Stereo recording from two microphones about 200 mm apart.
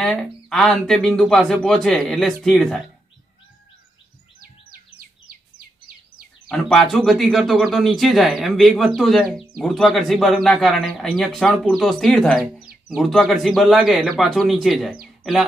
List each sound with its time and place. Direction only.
0.0 s speech: 5° left (ahead or behind)
4.9 s bird: 50° right (ahead or behind)
6.5 s speech: centre (ahead or behind)